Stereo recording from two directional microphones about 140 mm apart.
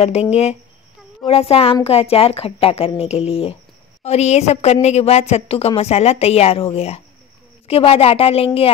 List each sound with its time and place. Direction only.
0.0 s a woman's voice: 50° left (ahead or behind)